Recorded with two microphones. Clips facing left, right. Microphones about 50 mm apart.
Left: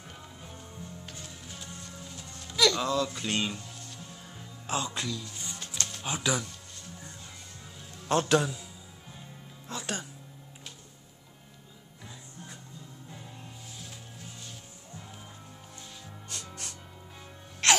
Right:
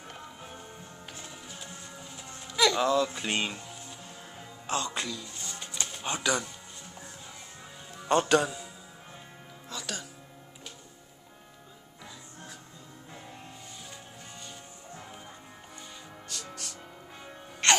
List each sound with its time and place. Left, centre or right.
1.1 s music: centre
4.6 s speech: centre
4.9 s speech: centre
5.6 s music: centre
8.0 s a man's voice: centre
9.7 s music: left
17.6 s music: centre